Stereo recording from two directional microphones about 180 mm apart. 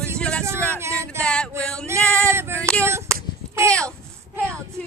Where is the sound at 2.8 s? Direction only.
15° right (ahead or behind).